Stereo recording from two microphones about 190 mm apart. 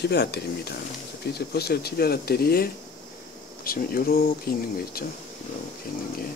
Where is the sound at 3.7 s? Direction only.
50° left (ahead or behind).